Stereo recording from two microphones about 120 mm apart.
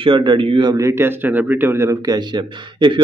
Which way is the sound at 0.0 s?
45° right (ahead or behind).